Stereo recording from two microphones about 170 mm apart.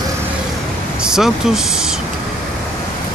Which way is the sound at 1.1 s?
5° right (ahead or behind).